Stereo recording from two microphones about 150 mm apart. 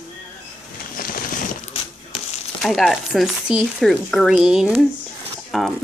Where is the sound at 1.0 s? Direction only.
70° left (ahead or behind).